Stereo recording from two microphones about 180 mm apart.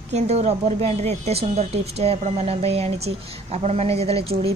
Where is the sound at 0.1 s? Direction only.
35° right (ahead or behind).